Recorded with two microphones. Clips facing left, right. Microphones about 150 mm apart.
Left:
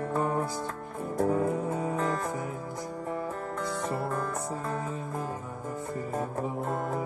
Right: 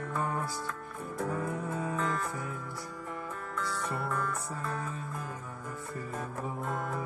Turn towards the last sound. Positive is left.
turn(degrees=40)  # may be behind; listen again after turning